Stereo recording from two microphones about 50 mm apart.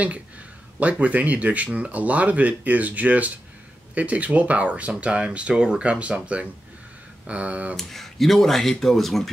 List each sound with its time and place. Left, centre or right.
0.7 s speech: right
7.7 s speech: centre